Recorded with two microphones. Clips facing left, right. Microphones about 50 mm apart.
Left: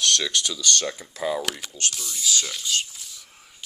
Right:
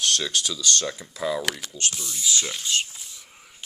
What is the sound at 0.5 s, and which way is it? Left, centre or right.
Speech, left.